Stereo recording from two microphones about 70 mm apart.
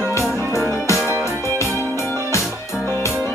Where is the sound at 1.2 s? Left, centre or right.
Right.